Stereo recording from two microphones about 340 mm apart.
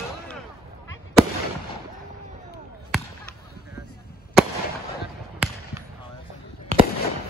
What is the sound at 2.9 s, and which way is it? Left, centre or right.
Fireworks, centre.